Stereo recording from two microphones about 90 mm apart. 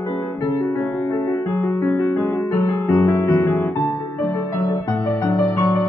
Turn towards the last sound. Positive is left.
turn(degrees=35)  # may be behind; listen again after turning